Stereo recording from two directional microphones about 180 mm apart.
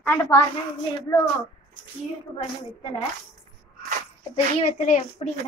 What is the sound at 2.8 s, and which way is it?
Speech, 30° left (ahead or behind).